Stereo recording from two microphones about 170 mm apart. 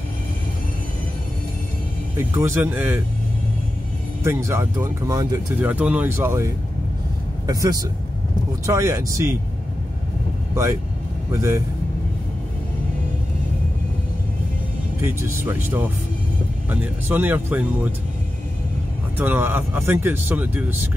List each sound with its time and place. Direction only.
2.1 s speech: 15° right (ahead or behind)
4.2 s speech: 15° right (ahead or behind)
5.7 s speech: 10° right (ahead or behind)
10.5 s speech: 20° right (ahead or behind)
15.0 s speech: 15° right (ahead or behind)
19.1 s speech: 10° right (ahead or behind)